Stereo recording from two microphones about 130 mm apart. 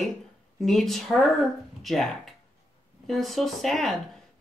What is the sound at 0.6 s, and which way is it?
Speech, centre (ahead or behind).